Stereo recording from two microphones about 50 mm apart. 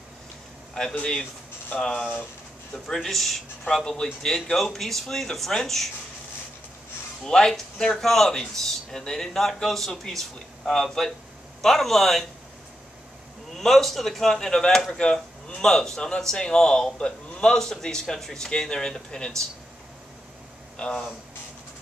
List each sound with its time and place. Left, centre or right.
0.8 s a man's voice: centre
3.6 s speech: centre
7.2 s a man's voice: centre
13.6 s speech: centre
20.7 s speech: centre